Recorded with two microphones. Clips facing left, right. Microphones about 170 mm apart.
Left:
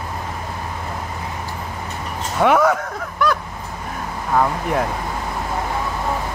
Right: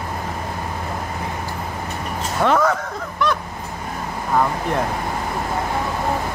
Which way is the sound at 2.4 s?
10° left (ahead or behind).